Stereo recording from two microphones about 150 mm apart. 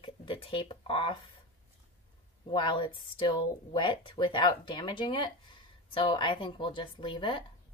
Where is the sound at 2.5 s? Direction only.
35° left (ahead or behind).